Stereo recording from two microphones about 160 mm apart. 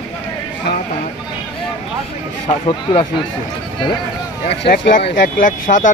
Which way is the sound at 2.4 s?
45° left (ahead or behind).